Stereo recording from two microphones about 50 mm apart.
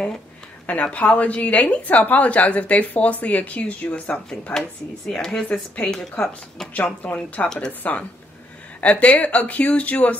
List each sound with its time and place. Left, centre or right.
0.7 s a woman's voice: left
4.6 s speech: centre
5.8 s a woman's voice: left
6.8 s a woman's voice: left